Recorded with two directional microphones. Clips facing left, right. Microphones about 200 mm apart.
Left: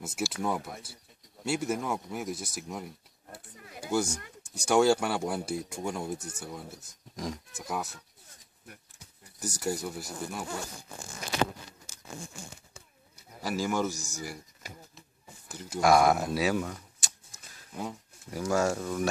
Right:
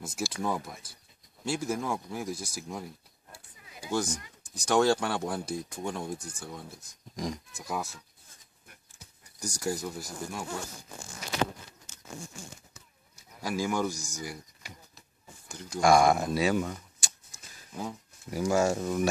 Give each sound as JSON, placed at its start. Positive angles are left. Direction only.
{"t": 0.0, "sound": "speech", "side_deg": 5}
{"t": 3.3, "sound": "a sound", "side_deg": 55}
{"t": 3.9, "sound": "speech", "side_deg": 10}
{"t": 9.4, "sound": "speech", "side_deg": 5}
{"t": 13.1, "sound": "pigeon", "side_deg": -10}
{"t": 13.8, "sound": "speech", "side_deg": -15}
{"t": 15.0, "sound": "a sound", "side_deg": 5}
{"t": 18.4, "sound": "speech", "side_deg": -15}